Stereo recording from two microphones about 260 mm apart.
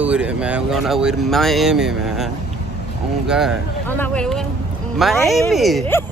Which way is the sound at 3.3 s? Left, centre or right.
Centre.